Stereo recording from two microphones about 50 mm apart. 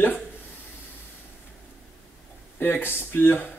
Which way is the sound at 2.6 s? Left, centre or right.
Left.